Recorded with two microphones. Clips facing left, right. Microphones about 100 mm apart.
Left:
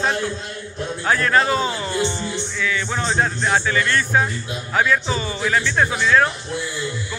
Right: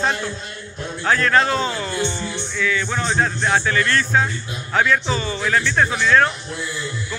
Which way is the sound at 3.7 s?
15° left (ahead or behind).